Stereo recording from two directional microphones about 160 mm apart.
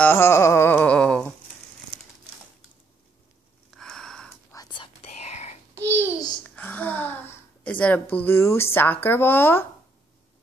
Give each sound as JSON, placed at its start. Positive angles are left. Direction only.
{"t": 0.0, "sound": "music", "side_deg": 15}
{"t": 3.7, "sound": "a sound", "side_deg": 5}
{"t": 4.5, "sound": "whispering", "side_deg": 25}
{"t": 5.2, "sound": "whispering", "side_deg": 45}
{"t": 5.8, "sound": "babbling", "side_deg": -15}
{"t": 6.5, "sound": "a sound", "side_deg": 10}
{"t": 8.7, "sound": "speech", "side_deg": 10}